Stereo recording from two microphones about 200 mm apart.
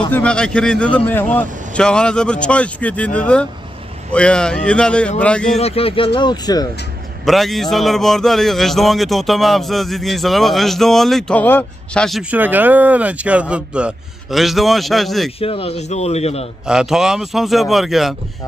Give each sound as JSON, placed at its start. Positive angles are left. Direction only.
{"t": 0.1, "sound": "a man's voice", "side_deg": 5}
{"t": 5.6, "sound": "speech", "side_deg": 30}
{"t": 7.2, "sound": "a man's voice", "side_deg": 0}
{"t": 15.4, "sound": "speech", "side_deg": 30}
{"t": 16.6, "sound": "a man's voice", "side_deg": -5}